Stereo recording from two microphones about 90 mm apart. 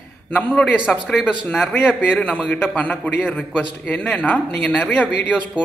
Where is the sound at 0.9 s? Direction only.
10° left (ahead or behind).